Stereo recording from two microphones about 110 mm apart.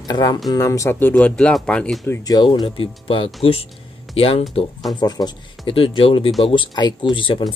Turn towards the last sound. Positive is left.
turn(degrees=50)  # may be behind; listen again after turning